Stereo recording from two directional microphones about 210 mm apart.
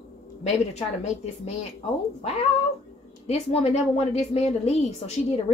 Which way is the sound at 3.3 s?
30° left (ahead or behind).